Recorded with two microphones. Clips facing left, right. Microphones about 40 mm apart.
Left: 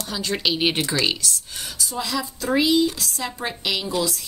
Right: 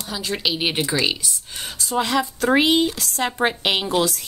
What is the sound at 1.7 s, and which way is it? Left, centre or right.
Speech, right.